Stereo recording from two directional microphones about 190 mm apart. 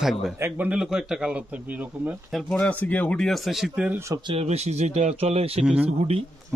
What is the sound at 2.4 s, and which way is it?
A man's voice, 5° left (ahead or behind).